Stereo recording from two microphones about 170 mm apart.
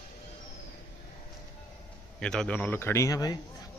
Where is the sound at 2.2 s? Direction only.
5° left (ahead or behind); by 3.4 s 20° left (ahead or behind).